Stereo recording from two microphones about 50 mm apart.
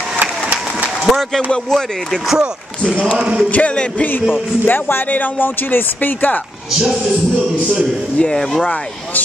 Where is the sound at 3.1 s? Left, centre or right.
Centre.